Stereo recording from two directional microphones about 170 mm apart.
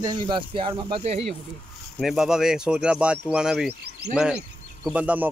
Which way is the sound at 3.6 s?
70° right (ahead or behind).